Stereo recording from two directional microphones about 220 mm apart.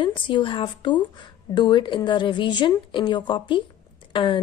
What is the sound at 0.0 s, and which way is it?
Speech, 20° left (ahead or behind).